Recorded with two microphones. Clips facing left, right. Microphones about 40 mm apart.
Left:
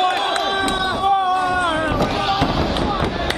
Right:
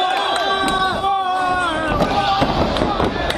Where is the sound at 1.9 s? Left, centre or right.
Centre.